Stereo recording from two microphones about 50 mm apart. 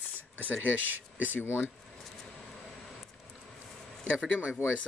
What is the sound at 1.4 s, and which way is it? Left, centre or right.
Speech, left.